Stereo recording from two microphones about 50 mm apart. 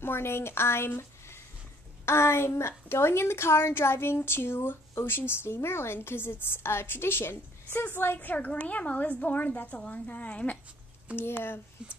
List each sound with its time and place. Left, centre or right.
0.0 s a woman's voice: left
8.2 s a woman's voice: left
11.1 s speech: left